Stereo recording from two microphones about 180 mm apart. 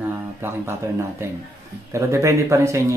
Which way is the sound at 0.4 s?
15° right (ahead or behind).